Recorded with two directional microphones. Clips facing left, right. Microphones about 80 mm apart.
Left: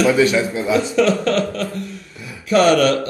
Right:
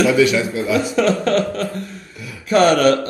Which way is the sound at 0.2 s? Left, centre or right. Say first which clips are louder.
Even; left.